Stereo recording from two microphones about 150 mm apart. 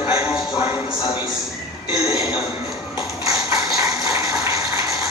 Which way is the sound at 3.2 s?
25° right (ahead or behind).